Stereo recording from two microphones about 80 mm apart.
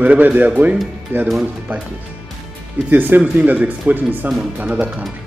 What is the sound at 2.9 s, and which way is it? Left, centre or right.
Speech, right.